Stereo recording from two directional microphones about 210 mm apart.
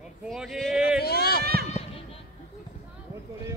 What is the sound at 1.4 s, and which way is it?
Run, 50° right (ahead or behind).